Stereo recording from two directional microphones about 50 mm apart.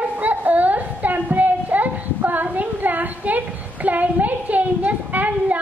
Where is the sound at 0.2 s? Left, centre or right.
Right.